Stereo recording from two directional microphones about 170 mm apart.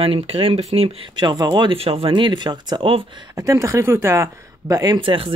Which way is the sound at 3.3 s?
20° right (ahead or behind).